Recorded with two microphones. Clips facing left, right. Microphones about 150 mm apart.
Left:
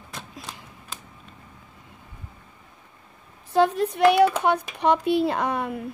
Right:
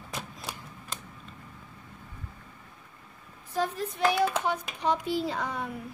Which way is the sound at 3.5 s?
75° left (ahead or behind).